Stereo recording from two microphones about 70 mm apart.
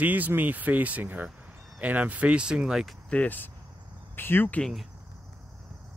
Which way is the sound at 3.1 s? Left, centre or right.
Left.